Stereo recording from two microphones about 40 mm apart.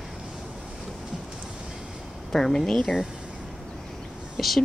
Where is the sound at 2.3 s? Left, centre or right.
Centre.